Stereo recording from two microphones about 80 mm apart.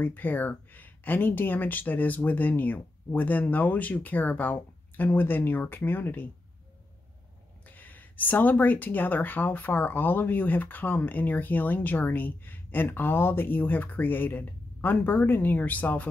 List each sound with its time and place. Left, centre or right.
0.0 s speech: left
7.6 s speech: left